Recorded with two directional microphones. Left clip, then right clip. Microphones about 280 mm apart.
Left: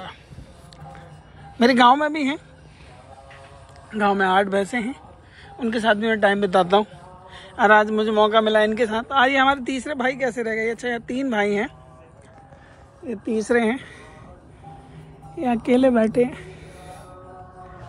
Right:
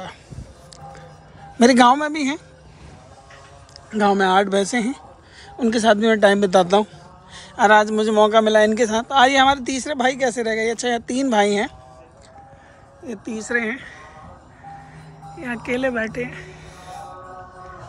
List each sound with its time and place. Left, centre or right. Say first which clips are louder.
1.6 s a man's voice: right 1 dB; centre
4.0 s a man's voice: right 2 dB; centre
13.4 s speech: left 2 dB; centre
15.4 s speech: left 5 dB; centre